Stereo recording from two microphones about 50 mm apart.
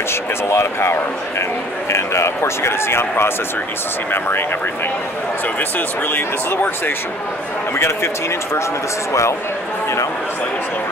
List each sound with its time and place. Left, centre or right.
0.1 s speech: left
5.6 s speech: left
7.7 s speech: left